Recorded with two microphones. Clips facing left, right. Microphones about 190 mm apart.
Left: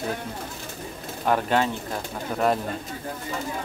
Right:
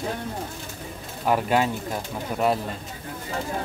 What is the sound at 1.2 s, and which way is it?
Speech, 5° right (ahead or behind).